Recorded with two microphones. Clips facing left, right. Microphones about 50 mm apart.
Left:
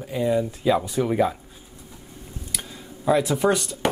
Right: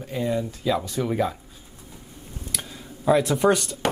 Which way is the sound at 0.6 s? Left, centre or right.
Centre.